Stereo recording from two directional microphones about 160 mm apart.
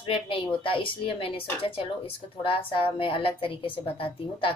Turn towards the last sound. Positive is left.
turn(degrees=30)  # may be behind; listen again after turning